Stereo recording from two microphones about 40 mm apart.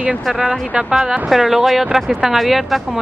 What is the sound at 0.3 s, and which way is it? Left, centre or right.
A woman's voice, centre.